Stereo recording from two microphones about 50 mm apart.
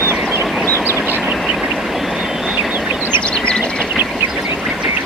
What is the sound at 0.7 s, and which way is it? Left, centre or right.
Vehicle, left.